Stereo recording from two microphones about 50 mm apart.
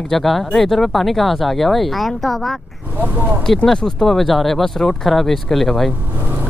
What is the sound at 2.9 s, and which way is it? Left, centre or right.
Speech, right.